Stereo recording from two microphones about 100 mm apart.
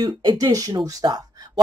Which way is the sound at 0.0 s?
45° right (ahead or behind).